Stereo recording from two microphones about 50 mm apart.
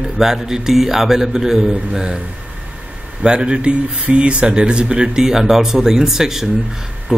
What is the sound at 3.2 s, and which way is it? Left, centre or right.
A man's voice, centre.